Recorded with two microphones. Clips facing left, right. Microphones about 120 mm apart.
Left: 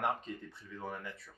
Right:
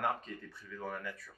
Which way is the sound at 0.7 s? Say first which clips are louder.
Right 1 dB; 25° left (ahead or behind).